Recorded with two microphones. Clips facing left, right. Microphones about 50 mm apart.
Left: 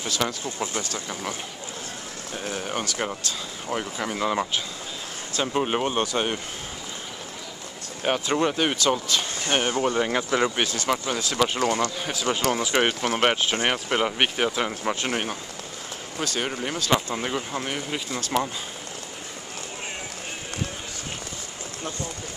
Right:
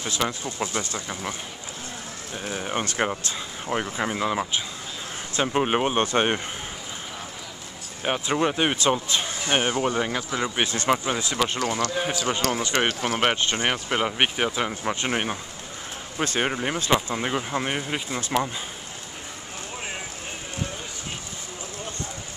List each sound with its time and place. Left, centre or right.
0.0 s speech: right
2.3 s speech: centre
2.8 s speech: right
3.7 s speech: right
4.2 s speech: centre
5.3 s speech: right
6.1 s speech: right
8.0 s speech: centre
8.5 s speech: right
10.1 s speech: centre
10.6 s speech: right
10.9 s speech: centre
11.3 s speech: centre
16.2 s speech: right